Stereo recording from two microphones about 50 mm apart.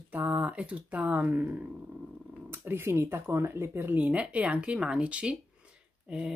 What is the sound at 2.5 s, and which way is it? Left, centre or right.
Speech, right.